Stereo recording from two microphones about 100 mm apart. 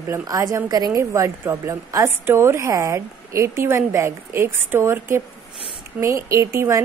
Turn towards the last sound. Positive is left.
turn(degrees=-30)  # may be behind; listen again after turning